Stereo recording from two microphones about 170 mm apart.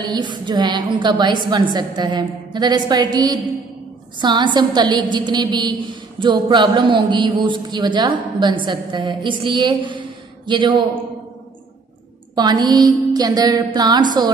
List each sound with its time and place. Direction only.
0.0 s a woman's voice: 25° right (ahead or behind)
12.4 s a woman's voice: 25° right (ahead or behind)